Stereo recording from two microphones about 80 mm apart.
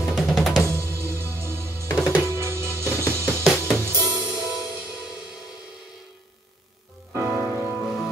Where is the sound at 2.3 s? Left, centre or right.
Right.